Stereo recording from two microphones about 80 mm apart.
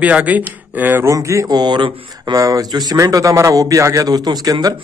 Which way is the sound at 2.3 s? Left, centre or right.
Right.